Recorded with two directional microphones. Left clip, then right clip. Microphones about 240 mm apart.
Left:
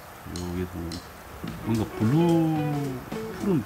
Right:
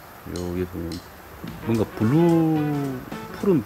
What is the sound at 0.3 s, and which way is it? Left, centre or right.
Speech, centre.